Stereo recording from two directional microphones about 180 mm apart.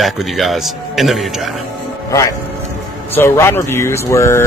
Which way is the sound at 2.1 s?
20° left (ahead or behind).